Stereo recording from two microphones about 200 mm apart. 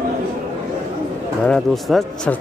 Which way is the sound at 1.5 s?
5° left (ahead or behind).